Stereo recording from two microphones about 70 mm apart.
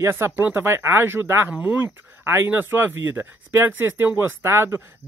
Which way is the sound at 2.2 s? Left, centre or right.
Right.